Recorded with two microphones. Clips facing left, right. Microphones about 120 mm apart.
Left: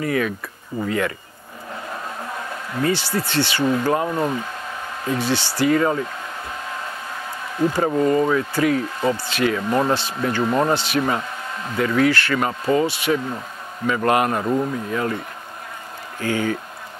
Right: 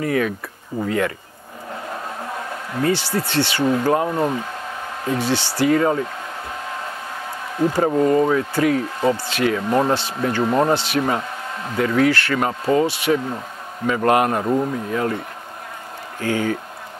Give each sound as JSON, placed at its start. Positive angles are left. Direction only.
{"t": 0.0, "sound": "speech", "side_deg": -45}
{"t": 1.7, "sound": "a sound", "side_deg": -30}
{"t": 3.1, "sound": "speech", "side_deg": -35}
{"t": 6.5, "sound": "hair dryer", "side_deg": -35}
{"t": 7.5, "sound": "speech", "side_deg": -35}
{"t": 14.4, "sound": "speech", "side_deg": -20}
{"t": 14.7, "sound": "speech", "side_deg": -35}
{"t": 16.2, "sound": "speech", "side_deg": -40}